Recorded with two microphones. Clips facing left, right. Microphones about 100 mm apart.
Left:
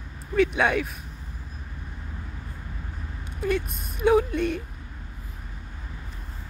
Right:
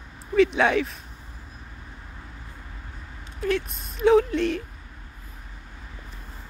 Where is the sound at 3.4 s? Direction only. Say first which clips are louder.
Right 1 dB; 10° left (ahead or behind).